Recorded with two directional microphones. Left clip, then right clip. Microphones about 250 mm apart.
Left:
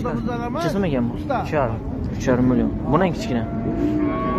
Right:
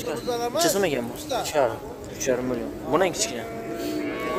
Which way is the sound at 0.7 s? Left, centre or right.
Right.